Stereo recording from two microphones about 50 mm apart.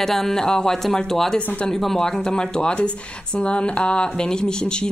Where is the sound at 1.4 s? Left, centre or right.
Left.